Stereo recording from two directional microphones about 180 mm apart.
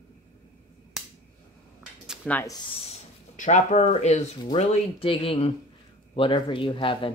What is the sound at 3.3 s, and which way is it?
Speech, 45° left (ahead or behind).